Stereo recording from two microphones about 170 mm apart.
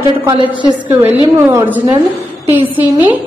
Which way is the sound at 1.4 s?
15° right (ahead or behind).